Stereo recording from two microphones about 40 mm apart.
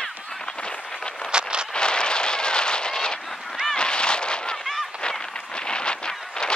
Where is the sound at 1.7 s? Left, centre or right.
Left.